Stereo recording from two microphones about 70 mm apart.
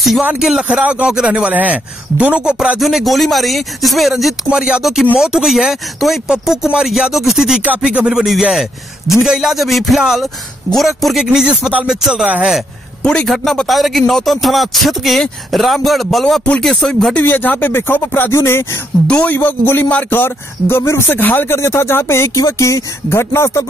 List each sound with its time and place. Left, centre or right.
0.4 s a man's voice: centre
2.8 s speech: centre
4.5 s a man's voice: centre
7.6 s a man's voice: centre
11.4 s a man's voice: centre
13.0 s a man's voice: centre
17.1 s speech: left
18.3 s speech: left
19.0 s speech: left
21.2 s speech: left
21.5 s speech: left
23.0 s speech: left